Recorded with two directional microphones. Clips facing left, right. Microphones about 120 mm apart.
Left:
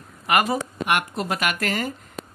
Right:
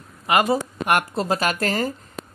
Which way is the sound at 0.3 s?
25° right (ahead or behind).